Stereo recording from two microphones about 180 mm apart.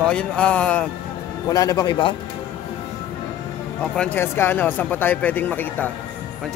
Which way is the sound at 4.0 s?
10° left (ahead or behind).